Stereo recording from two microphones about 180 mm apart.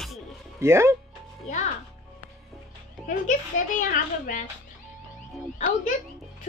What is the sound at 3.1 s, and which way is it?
A woman's voice, 45° left (ahead or behind).